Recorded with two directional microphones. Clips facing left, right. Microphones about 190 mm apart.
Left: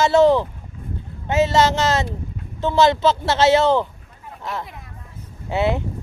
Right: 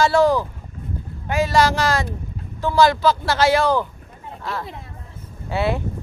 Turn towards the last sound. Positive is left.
turn(degrees=20)  # may be behind; listen again after turning